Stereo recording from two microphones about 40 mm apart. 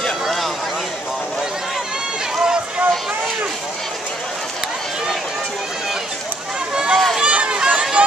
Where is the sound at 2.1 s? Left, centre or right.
Centre.